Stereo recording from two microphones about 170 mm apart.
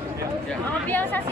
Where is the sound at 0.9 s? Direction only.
10° left (ahead or behind).